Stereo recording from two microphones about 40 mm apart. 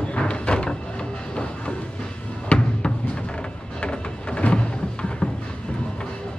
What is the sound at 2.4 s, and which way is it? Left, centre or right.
Music, left.